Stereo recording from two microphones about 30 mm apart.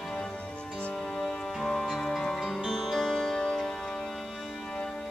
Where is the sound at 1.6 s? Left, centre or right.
Centre.